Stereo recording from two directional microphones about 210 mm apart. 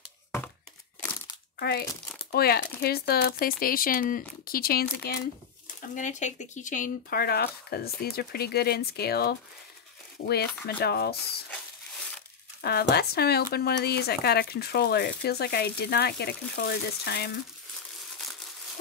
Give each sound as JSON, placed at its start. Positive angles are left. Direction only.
{"t": 1.6, "sound": "speech", "side_deg": 50}
{"t": 5.8, "sound": "speech", "side_deg": 35}
{"t": 12.6, "sound": "speech", "side_deg": 50}